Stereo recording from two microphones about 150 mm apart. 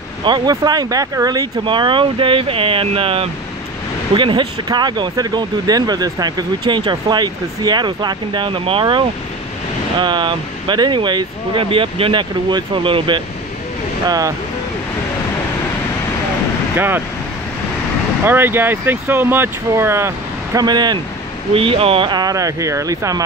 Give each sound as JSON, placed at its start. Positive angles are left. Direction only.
{"t": 0.2, "sound": "speech", "side_deg": -30}
{"t": 16.7, "sound": "speech", "side_deg": -15}
{"t": 18.2, "sound": "speech", "side_deg": -15}
{"t": 20.6, "sound": "speech", "side_deg": -30}
{"t": 21.5, "sound": "speech", "side_deg": -40}